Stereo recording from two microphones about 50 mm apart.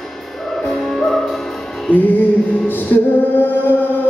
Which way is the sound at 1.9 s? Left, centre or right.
Left.